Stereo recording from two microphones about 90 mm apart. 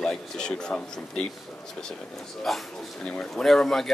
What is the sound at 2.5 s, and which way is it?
Speech, centre (ahead or behind).